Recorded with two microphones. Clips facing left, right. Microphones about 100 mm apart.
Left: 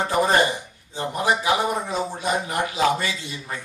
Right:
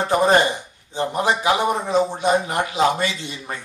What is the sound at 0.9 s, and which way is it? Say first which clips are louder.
A man's voice: right 2 dB; 20° right (ahead or behind).